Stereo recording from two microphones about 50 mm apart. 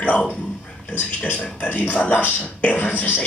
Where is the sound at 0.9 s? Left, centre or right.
Left.